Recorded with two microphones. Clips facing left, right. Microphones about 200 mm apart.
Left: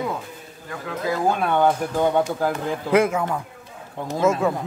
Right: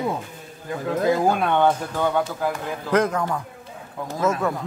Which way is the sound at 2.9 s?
10° left (ahead or behind).